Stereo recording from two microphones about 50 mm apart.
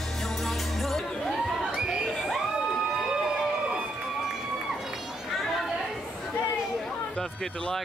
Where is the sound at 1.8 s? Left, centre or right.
Centre.